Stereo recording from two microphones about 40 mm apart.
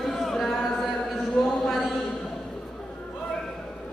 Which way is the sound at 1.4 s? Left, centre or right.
Centre.